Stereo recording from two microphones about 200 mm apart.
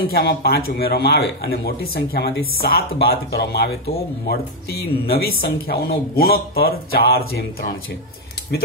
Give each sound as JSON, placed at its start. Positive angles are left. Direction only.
{"t": 0.0, "sound": "a man's voice", "side_deg": 50}